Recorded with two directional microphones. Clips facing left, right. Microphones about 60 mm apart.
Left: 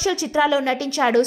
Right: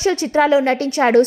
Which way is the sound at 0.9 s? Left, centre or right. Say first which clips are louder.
Right 4 dB; right.